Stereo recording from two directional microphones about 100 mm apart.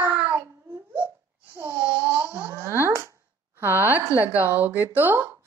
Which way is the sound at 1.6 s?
25° right (ahead or behind).